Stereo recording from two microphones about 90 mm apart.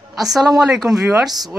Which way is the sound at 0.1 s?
Centre (ahead or behind).